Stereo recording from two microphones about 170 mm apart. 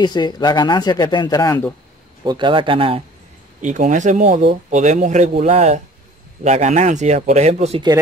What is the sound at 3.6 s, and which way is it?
Speech, 45° right (ahead or behind).